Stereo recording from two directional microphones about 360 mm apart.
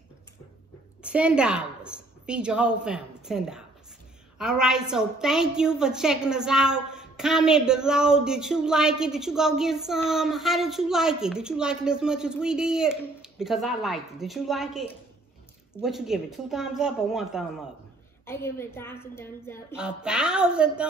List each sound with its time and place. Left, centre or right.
1.0 s a woman's voice: centre